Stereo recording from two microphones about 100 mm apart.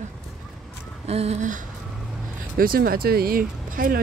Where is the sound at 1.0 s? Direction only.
90° right.